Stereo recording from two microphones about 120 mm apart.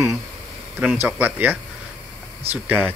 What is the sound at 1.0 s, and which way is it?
Speech, 15° right (ahead or behind).